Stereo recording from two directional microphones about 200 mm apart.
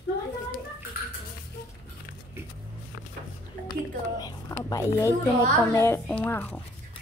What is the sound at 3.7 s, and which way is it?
A woman's voice, 20° left (ahead or behind).